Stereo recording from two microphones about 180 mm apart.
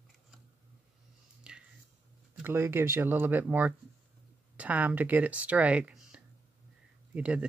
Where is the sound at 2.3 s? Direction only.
10° right (ahead or behind).